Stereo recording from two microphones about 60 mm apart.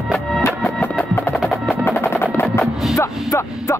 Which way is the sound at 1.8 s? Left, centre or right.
Left.